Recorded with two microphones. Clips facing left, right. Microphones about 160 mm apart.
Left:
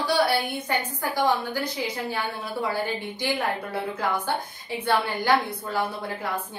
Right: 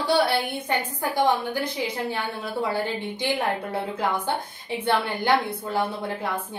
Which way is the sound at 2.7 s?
25° right (ahead or behind).